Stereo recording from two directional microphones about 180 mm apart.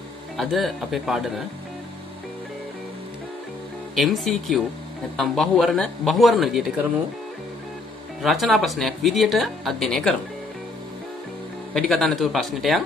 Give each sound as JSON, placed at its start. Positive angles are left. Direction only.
{"t": 0.4, "sound": "speech", "side_deg": 0}
{"t": 3.9, "sound": "speech", "side_deg": 0}
{"t": 8.2, "sound": "speech", "side_deg": 0}
{"t": 11.7, "sound": "speech", "side_deg": 0}